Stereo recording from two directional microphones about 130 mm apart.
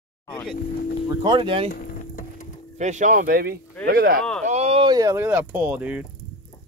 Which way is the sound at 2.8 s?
70° right (ahead or behind).